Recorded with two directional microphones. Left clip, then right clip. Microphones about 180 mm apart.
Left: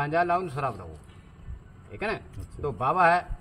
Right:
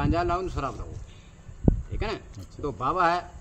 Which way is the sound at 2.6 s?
20° right (ahead or behind).